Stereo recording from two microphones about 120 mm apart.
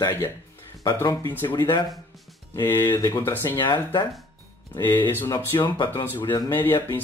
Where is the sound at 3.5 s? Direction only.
40° left (ahead or behind).